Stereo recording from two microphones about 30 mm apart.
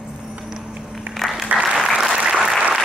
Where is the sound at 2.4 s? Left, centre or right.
Centre.